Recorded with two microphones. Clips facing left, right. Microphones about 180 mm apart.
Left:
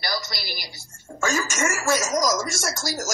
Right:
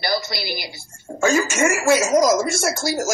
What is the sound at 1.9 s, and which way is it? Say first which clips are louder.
Speech: right 7 dB; 60° right (ahead or behind).